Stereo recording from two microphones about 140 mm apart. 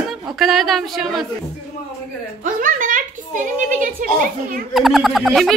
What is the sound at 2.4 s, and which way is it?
A child's voice, 70° right (ahead or behind).